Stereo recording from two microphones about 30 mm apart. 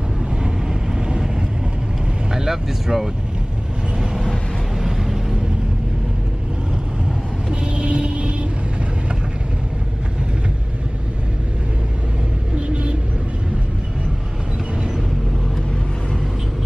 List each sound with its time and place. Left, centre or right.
2.3 s speech: centre
4.7 s vehicle: centre
7.6 s vehicle: right
12.5 s vehicle: right